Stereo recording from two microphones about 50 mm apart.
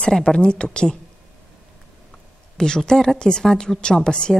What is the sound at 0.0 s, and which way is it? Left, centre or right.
Speech, centre.